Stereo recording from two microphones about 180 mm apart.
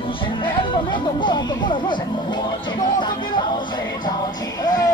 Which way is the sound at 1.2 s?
25° left (ahead or behind).